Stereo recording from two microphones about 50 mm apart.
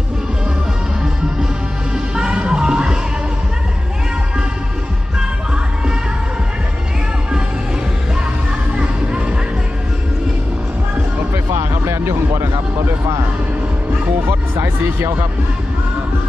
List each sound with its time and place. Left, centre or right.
2.1 s music: centre
11.7 s music: right
12.1 s music: right
14.2 s music: right